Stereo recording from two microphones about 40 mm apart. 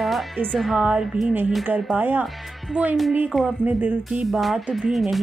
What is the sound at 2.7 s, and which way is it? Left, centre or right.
Speech, right.